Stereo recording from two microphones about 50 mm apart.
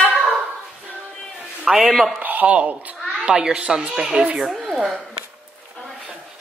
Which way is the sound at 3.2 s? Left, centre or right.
Centre.